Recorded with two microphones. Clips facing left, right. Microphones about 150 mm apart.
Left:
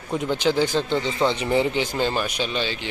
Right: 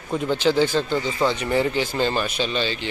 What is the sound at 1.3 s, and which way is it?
Speech, 25° left (ahead or behind).